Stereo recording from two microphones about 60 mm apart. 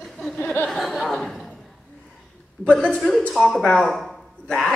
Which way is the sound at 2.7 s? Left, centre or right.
Centre.